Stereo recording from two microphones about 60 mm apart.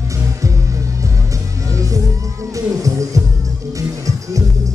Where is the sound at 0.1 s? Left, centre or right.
Right.